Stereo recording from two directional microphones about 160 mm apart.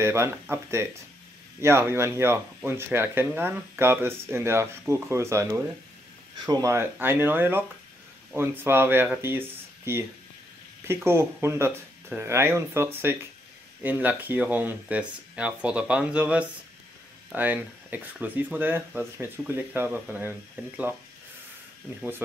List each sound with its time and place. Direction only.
0.0 s speech: 15° right (ahead or behind)